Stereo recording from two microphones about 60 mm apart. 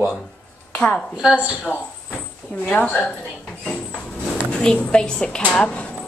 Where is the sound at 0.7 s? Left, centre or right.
Centre.